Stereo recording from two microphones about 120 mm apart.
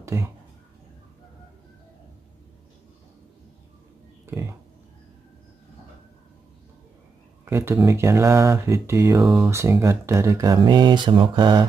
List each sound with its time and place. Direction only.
0.0 s speech: 25° right (ahead or behind)
4.3 s a sound: 20° right (ahead or behind)
7.4 s speech: 20° right (ahead or behind); by 11.6 s 40° right (ahead or behind)